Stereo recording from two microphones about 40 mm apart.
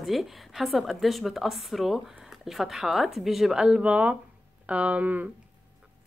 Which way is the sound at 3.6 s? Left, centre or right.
Right.